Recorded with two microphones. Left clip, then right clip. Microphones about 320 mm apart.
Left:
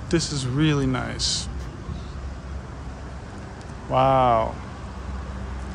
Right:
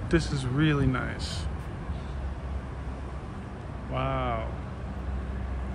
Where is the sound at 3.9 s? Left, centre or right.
Centre.